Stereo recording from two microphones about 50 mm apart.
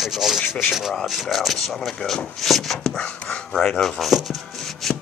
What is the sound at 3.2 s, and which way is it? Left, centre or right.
Speech, centre.